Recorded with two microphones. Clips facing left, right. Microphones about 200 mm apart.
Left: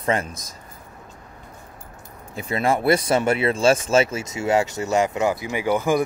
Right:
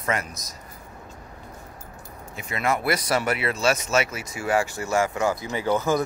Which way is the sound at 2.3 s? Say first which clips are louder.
Left 4 dB; 30° left (ahead or behind).